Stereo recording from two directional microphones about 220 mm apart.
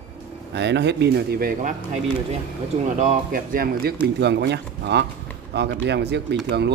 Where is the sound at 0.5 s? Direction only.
50° right (ahead or behind).